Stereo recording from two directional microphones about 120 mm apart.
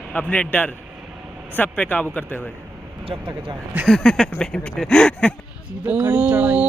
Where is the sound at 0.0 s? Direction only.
10° left (ahead or behind).